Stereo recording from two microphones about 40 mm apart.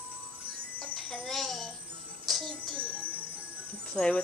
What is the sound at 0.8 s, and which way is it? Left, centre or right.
Music, centre.